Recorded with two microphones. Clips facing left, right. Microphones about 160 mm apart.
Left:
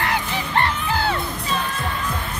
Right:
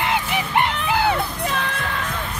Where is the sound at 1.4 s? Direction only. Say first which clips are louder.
Right 1 dB; 65° right (ahead or behind).